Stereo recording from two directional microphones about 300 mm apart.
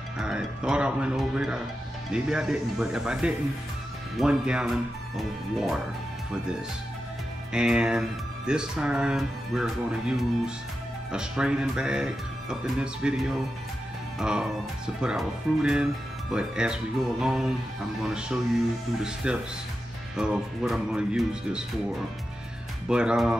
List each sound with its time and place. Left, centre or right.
0.2 s speech: centre
7.5 s speech: centre
22.8 s speech: centre